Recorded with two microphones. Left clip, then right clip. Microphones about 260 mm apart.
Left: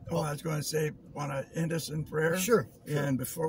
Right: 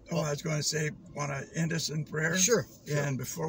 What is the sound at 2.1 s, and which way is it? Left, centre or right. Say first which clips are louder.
Speech: left 1 dB; centre.